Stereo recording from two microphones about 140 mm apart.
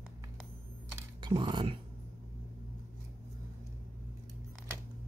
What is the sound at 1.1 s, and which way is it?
Speech, 30° right (ahead or behind).